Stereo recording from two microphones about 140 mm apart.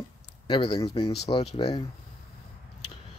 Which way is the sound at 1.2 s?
50° left (ahead or behind).